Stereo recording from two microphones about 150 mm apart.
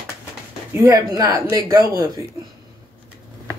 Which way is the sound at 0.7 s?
20° right (ahead or behind).